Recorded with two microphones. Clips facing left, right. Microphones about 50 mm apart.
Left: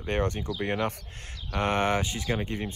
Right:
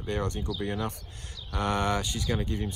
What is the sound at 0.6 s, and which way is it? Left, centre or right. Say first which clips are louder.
Speech: left 6 dB; left.